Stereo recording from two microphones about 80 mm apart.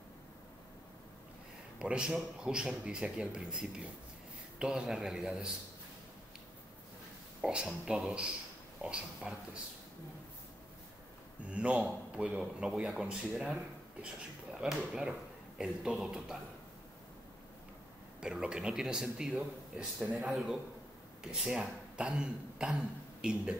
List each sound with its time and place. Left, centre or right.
1.8 s a man's voice: centre
7.4 s a man's voice: centre
11.4 s a man's voice: centre
18.2 s a man's voice: centre
20.2 s a man's voice: centre